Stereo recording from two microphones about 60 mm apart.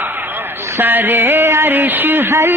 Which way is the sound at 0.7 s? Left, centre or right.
Right.